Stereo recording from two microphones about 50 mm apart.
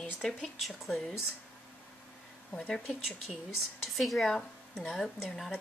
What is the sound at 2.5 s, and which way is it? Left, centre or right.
Speech, centre.